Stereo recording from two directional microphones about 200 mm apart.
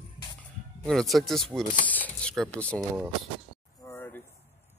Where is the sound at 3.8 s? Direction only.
10° left (ahead or behind).